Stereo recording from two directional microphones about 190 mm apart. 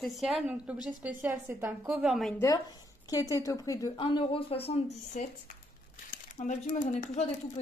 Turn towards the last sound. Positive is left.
turn(degrees=40)  # may be behind; listen again after turning